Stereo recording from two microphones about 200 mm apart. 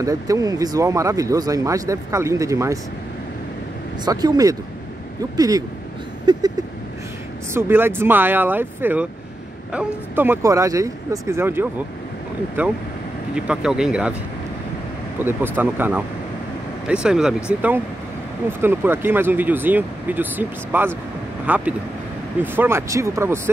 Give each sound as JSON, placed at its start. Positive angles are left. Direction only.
{"t": 0.0, "sound": "speech", "side_deg": -15}
{"t": 4.0, "sound": "speech", "side_deg": -20}
{"t": 6.3, "sound": "vehicle", "side_deg": -20}
{"t": 7.5, "sound": "speech", "side_deg": -10}
{"t": 15.1, "sound": "speech", "side_deg": -10}